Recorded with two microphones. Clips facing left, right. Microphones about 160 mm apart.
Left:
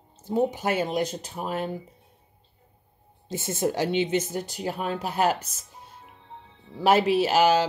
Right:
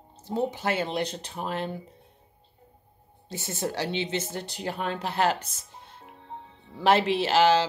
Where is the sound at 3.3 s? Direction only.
50° left (ahead or behind).